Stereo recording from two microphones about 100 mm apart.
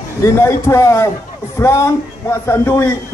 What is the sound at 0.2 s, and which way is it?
A man's voice, 30° left (ahead or behind).